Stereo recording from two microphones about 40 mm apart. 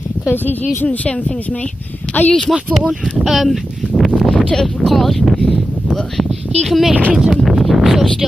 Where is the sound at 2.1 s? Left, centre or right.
Left.